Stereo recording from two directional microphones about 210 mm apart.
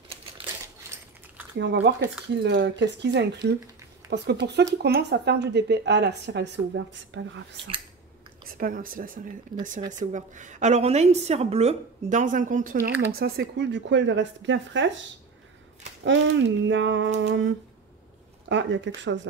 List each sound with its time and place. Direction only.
1.6 s a woman's voice: 55° right (ahead or behind)
8.5 s a woman's voice: 45° right (ahead or behind); by 15.0 s 60° right (ahead or behind)
16.0 s a woman's voice: 60° right (ahead or behind)